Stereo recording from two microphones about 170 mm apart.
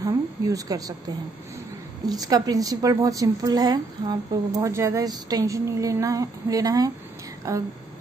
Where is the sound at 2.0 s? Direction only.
20° right (ahead or behind).